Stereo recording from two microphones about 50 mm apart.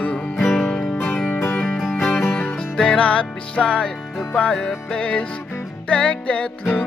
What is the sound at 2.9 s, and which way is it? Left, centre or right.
Music, left.